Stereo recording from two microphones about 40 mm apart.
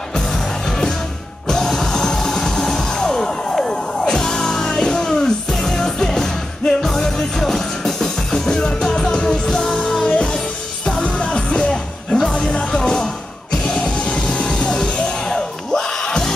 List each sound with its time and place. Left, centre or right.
0.1 s music: centre
11.0 s music: left